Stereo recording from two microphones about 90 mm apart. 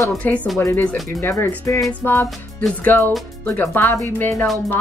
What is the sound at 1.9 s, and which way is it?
Speech, 15° left (ahead or behind).